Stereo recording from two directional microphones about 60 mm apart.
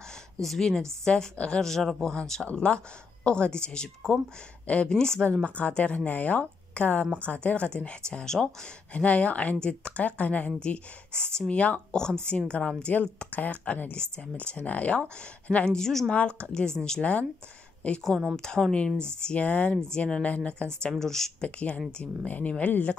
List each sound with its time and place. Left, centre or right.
0.4 s speech: centre
8.9 s speech: left
15.7 s speech: centre
16.1 s speech: left
21.5 s speech: centre